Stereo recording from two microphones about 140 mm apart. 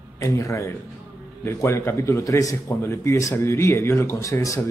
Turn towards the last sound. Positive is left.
turn(degrees=25)  # may be behind; listen again after turning